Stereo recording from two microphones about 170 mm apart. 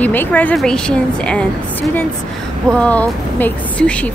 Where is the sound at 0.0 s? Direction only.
10° left (ahead or behind).